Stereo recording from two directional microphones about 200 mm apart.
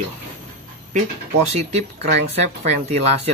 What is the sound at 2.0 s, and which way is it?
Speech, 55° right (ahead or behind).